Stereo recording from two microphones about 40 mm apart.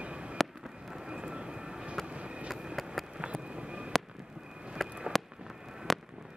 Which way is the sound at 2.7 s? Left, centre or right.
Centre.